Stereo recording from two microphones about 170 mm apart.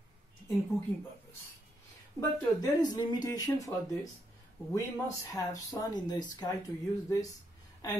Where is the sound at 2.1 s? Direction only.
25° left (ahead or behind).